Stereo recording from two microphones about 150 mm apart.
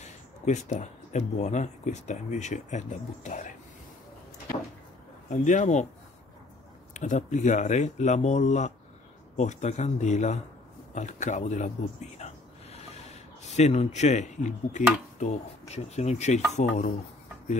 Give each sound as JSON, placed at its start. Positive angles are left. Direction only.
{"t": 0.0, "sound": "speech", "side_deg": 50}
{"t": 5.3, "sound": "speech", "side_deg": 55}
{"t": 6.9, "sound": "speech", "side_deg": 55}
{"t": 12.7, "sound": "a sound", "side_deg": 45}
{"t": 15.2, "sound": "speech", "side_deg": 55}